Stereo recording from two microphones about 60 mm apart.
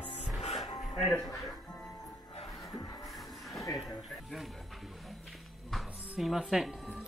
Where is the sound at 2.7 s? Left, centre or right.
Left.